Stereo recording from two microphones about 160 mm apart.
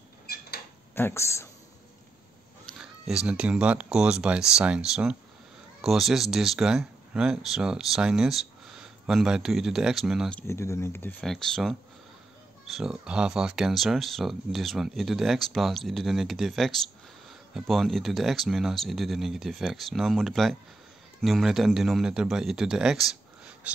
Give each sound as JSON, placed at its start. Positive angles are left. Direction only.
{"t": 0.3, "sound": "a sound", "side_deg": 85}
{"t": 0.9, "sound": "speech", "side_deg": 15}
{"t": 2.8, "sound": "speech", "side_deg": -5}
{"t": 10.4, "sound": "speech", "side_deg": 15}
{"t": 11.1, "sound": "speech", "side_deg": 0}
{"t": 12.7, "sound": "speech", "side_deg": -5}